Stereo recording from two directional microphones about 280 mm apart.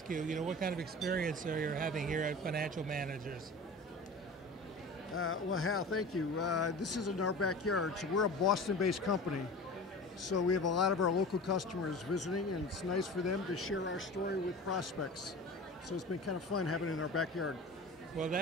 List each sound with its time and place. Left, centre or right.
0.1 s speech: right
5.1 s speech: left
14.7 s speech: left
18.2 s a man's voice: centre